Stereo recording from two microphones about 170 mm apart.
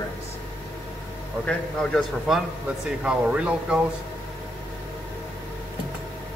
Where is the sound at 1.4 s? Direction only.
5° left (ahead or behind).